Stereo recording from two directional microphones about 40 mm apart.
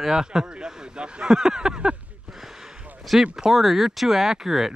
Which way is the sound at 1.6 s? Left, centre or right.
Centre.